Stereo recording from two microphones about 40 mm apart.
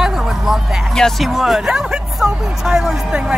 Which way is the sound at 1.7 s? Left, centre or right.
Centre.